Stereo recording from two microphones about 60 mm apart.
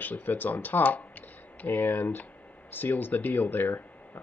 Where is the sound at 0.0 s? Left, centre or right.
Left.